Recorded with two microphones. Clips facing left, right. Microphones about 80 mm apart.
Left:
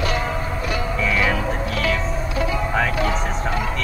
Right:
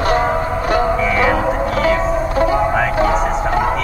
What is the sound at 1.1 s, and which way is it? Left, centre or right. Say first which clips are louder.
Music: right 5 dB; right.